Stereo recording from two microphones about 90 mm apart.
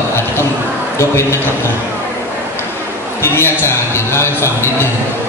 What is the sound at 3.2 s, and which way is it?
A man's voice, 30° left (ahead or behind).